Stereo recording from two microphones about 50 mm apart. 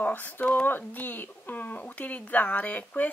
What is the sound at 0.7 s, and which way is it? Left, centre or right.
Speech, left.